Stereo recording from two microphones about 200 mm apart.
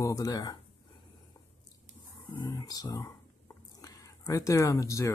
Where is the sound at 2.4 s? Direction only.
20° left (ahead or behind).